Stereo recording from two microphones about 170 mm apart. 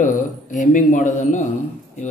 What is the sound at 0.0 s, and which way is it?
A man's voice, 50° left (ahead or behind).